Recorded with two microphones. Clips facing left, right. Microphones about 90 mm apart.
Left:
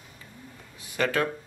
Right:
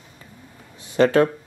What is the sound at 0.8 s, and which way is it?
Speech, 30° right (ahead or behind).